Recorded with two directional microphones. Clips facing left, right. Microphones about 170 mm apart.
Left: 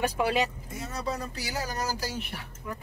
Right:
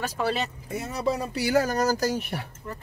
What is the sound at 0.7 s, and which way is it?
Speech, 70° right (ahead or behind).